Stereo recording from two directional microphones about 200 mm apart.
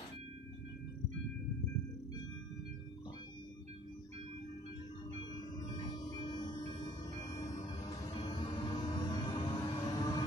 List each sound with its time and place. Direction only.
5.8 s music: 20° left (ahead or behind)